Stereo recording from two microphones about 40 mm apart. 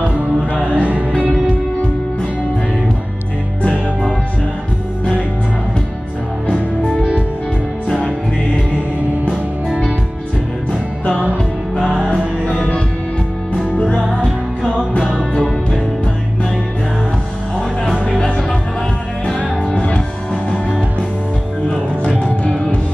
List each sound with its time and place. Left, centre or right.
0.7 s music: right
11.1 s music: right
12.4 s music: left
19.6 s music: left
22.4 s music: left